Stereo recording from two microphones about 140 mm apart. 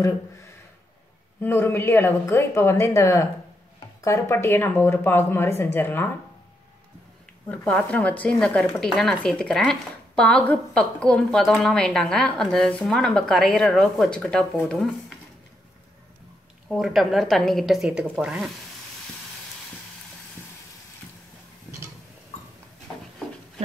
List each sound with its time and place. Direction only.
1.4 s speech: 15° left (ahead or behind)
7.4 s speech: 10° left (ahead or behind)
16.6 s speech: centre (ahead or behind)
21.7 s tick-tock: 5° left (ahead or behind)